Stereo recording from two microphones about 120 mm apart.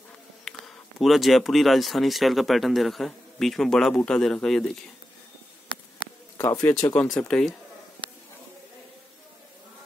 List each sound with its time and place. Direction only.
0.5 s speech: centre (ahead or behind)
6.3 s bird: 30° left (ahead or behind)
6.9 s speech: 10° left (ahead or behind)